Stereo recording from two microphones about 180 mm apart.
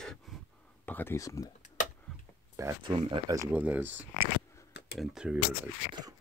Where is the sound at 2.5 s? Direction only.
20° right (ahead or behind).